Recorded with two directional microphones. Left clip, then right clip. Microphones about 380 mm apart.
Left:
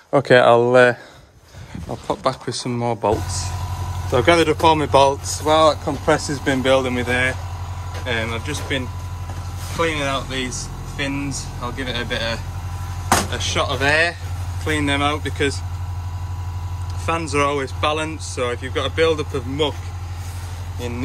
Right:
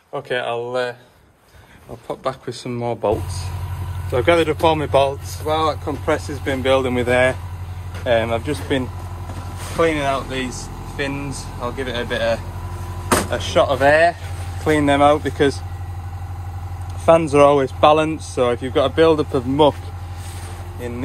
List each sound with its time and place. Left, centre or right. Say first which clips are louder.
0.1 s speech: left 11 dB; centre
2.0 s speech: left 3 dB; centre
17.0 s speech: right 8 dB; centre